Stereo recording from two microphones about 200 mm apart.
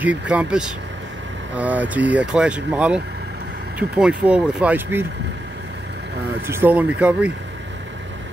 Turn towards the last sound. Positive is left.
turn(degrees=-5)  # may be behind; listen again after turning